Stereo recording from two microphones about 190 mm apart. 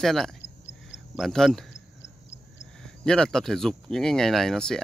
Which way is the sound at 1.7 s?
70° left (ahead or behind).